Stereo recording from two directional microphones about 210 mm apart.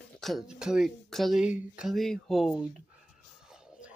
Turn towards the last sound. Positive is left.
turn(degrees=-5)  # may be behind; listen again after turning